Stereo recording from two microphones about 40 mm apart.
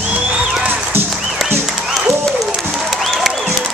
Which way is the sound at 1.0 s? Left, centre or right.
Centre.